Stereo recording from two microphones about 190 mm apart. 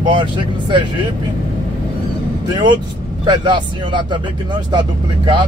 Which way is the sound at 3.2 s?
25° right (ahead or behind).